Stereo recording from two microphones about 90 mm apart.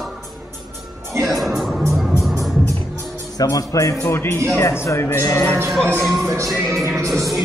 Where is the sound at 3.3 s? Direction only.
40° left (ahead or behind).